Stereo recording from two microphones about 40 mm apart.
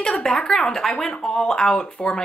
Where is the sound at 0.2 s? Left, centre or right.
Centre.